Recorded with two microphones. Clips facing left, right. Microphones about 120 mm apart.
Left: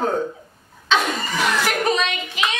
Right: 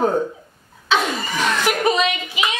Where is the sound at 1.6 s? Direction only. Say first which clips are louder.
Right 2 dB; 5° right (ahead or behind).